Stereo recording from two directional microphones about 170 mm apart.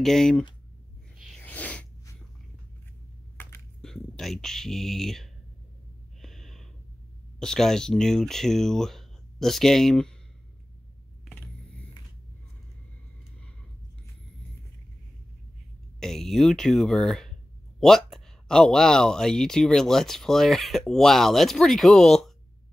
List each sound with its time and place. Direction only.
0.0 s speech: 5° left (ahead or behind)
1.1 s a sound: centre (ahead or behind)
1.4 s sneeze: 10° left (ahead or behind)
3.3 s crushing: 15° left (ahead or behind)
3.8 s speech: centre (ahead or behind)
6.2 s gasp: centre (ahead or behind)
7.3 s speech: 5° left (ahead or behind)
11.3 s vehicle: 5° left (ahead or behind)
16.0 s speech: centre (ahead or behind)